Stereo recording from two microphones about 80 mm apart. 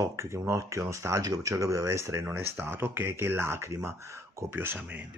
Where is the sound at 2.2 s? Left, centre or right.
Right.